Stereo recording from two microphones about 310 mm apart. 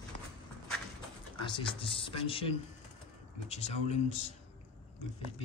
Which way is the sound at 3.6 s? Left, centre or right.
Centre.